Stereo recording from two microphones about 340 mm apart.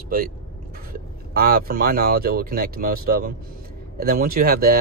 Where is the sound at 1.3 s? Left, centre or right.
Right.